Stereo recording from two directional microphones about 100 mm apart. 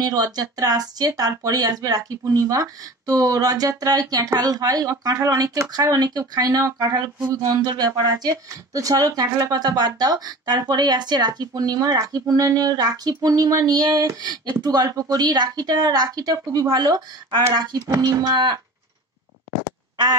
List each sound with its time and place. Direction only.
0.0 s speech: 40° right (ahead or behind)
17.9 s speech: 30° right (ahead or behind)
18.2 s speech: 45° right (ahead or behind)